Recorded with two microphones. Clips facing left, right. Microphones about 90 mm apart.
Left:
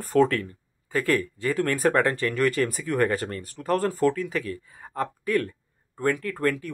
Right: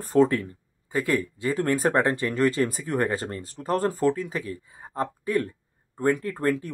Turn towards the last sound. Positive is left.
turn(degrees=-25)  # may be behind; listen again after turning